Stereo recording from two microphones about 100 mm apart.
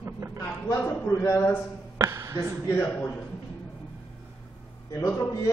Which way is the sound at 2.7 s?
20° left (ahead or behind).